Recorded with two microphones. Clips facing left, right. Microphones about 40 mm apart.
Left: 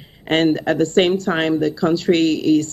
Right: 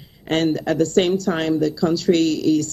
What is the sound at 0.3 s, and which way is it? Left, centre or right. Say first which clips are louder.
Speech: left 3 dB; left.